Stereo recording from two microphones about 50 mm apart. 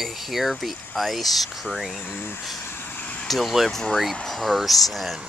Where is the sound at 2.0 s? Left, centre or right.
Left.